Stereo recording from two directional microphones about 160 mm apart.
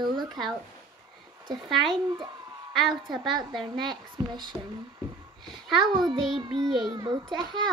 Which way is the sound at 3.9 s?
30° right (ahead or behind).